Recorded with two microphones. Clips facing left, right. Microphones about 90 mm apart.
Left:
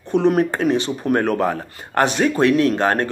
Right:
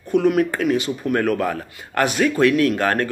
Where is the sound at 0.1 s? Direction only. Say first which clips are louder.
Left 1 dB; 30° left (ahead or behind).